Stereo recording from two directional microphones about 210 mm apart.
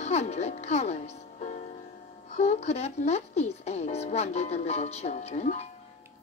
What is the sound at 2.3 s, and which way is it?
Speech, 30° left (ahead or behind).